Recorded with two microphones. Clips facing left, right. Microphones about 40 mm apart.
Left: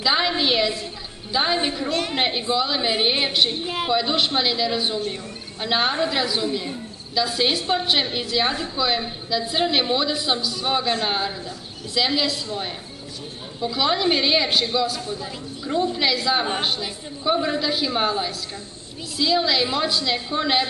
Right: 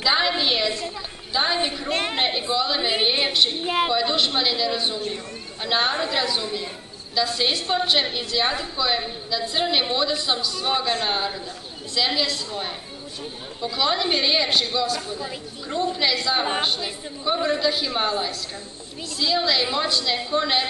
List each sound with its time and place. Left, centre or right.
0.0 s a woman's voice: centre
1.9 s a woman's voice: right
2.1 s a woman's voice: centre
3.6 s a woman's voice: centre
3.9 s a woman's voice: centre
13.6 s a woman's voice: centre